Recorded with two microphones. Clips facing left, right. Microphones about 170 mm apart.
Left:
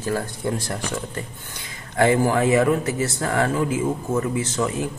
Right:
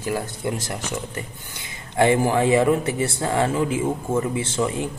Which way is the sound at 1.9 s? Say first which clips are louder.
Even; 20° right (ahead or behind).